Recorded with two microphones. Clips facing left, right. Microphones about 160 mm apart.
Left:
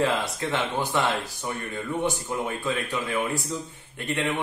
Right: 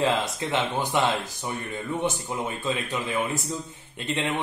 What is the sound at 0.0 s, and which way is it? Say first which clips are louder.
A man's voice: even; 20° right (ahead or behind).